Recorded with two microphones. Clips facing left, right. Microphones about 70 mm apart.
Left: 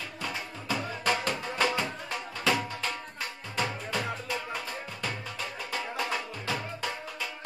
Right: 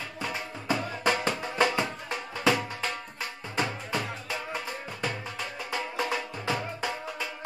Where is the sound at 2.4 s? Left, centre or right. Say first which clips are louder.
Right 2 dB; right.